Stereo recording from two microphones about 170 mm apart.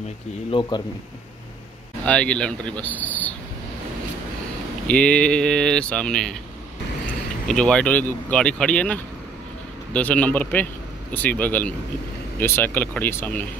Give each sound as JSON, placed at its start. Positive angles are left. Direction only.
{"t": 0.5, "sound": "speech", "side_deg": 25}
{"t": 2.0, "sound": "speech", "side_deg": 5}
{"t": 4.8, "sound": "speech", "side_deg": 5}
{"t": 7.4, "sound": "speech", "side_deg": 5}